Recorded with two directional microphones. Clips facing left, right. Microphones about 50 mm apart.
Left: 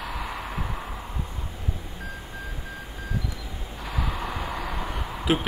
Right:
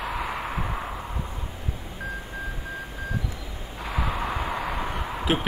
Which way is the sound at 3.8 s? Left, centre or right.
Centre.